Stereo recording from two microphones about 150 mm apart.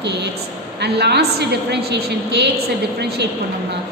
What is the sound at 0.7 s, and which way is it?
A woman's voice, 90° right.